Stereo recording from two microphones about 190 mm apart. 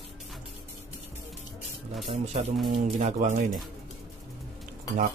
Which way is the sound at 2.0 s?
35° right (ahead or behind).